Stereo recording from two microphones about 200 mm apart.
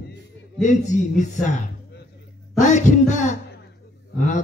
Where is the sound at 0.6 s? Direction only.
40° left (ahead or behind).